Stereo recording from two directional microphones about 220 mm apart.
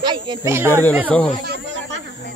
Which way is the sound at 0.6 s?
10° left (ahead or behind).